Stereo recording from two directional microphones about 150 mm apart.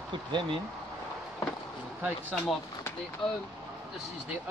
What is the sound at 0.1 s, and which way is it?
Speech, 30° right (ahead or behind).